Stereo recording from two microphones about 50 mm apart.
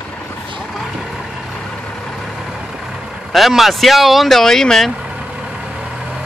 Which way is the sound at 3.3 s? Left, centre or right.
Centre.